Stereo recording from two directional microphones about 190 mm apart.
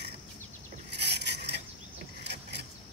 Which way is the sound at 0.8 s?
65° right (ahead or behind).